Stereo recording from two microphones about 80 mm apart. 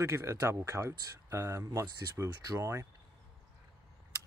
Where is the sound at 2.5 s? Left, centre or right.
Right.